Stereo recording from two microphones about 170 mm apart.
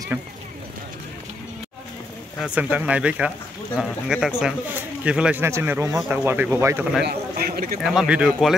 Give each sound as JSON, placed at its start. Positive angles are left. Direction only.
{"t": 0.1, "sound": "speech", "side_deg": -10}
{"t": 2.4, "sound": "speech", "side_deg": -10}
{"t": 7.1, "sound": "speech", "side_deg": -65}
{"t": 7.8, "sound": "speech", "side_deg": 0}